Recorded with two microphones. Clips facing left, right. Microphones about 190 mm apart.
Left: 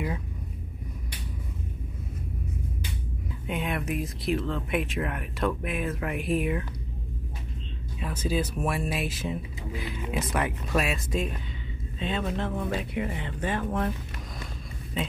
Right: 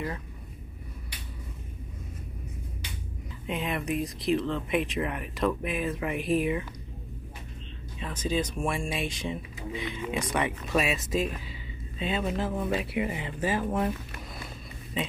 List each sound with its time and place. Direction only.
3.4 s speech: centre (ahead or behind)
8.0 s speech: 10° left (ahead or behind)